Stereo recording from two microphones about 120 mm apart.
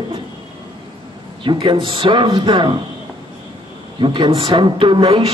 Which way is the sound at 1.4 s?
45° right (ahead or behind).